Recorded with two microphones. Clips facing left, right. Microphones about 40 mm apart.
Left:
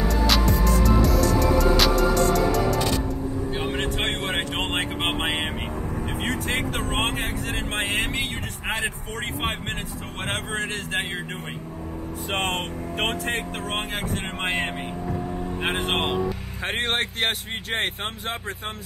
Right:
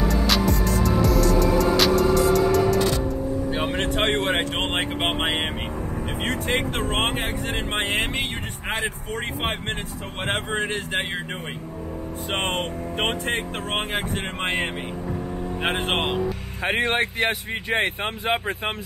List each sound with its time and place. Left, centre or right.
0.1 s music: centre
3.6 s vehicle: centre
4.4 s vehicle: centre
10.2 s speech: centre
12.4 s speech: centre
14.4 s vehicle: centre